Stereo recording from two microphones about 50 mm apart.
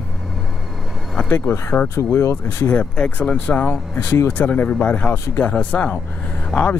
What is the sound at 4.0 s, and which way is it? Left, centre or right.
Speech, left.